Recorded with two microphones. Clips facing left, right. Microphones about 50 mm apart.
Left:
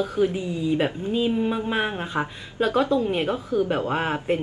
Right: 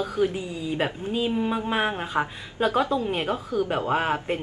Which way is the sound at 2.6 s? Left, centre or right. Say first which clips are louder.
Left 2 dB; right.